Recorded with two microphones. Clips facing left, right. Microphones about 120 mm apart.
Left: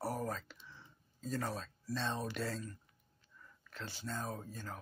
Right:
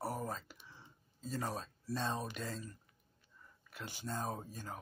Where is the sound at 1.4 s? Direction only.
20° right (ahead or behind).